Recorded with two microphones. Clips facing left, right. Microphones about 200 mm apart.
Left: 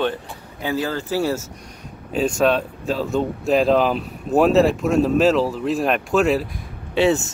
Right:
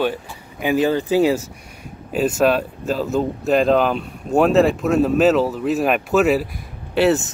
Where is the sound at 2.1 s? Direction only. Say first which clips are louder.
Right 1 dB; 5° right (ahead or behind).